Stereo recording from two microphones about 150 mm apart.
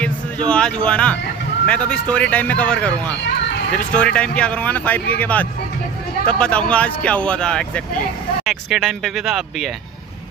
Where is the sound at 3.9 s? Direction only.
5° left (ahead or behind).